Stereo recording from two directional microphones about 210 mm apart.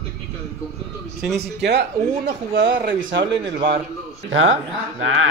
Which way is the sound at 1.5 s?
55° right (ahead or behind).